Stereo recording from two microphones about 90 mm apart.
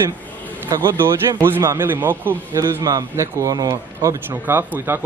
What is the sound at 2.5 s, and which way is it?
A man's voice, 35° right (ahead or behind).